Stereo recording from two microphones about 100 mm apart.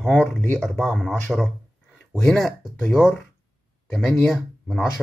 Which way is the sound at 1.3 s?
10° right (ahead or behind).